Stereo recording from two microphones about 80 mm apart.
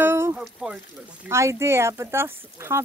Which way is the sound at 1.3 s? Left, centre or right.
Right.